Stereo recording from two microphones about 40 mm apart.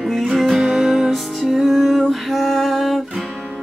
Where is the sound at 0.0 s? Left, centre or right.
Centre.